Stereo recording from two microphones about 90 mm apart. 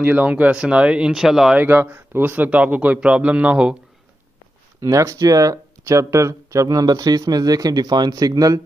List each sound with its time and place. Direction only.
0.0 s speech: 15° right (ahead or behind)
1.6 s speech: 20° right (ahead or behind)
4.7 s speech: 40° right (ahead or behind)